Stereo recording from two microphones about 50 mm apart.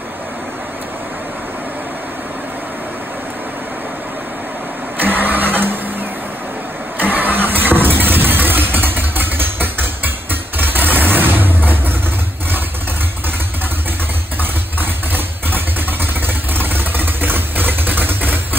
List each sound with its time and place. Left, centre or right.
4.9 s printer: right
7.0 s vehicle: right
14.8 s vehicle: right